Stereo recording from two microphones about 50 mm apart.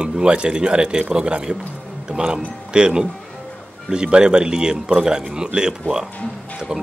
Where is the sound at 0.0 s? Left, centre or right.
Centre.